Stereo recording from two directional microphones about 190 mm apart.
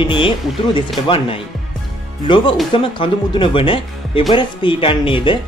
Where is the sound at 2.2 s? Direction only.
25° left (ahead or behind).